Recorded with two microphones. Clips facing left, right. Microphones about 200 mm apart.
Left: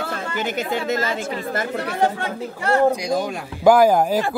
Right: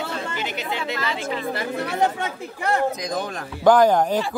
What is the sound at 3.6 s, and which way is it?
Speech, 10° left (ahead or behind).